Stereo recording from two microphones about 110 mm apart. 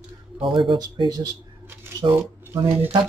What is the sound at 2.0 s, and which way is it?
Speech, 50° right (ahead or behind).